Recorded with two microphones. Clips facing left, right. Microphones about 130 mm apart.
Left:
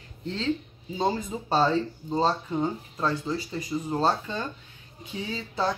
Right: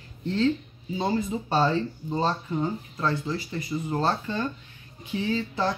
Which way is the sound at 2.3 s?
15° left (ahead or behind).